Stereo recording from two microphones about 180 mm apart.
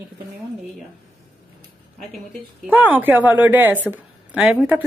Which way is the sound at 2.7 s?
10° right (ahead or behind).